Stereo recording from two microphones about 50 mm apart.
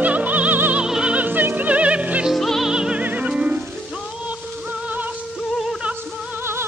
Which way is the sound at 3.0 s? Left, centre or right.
Right.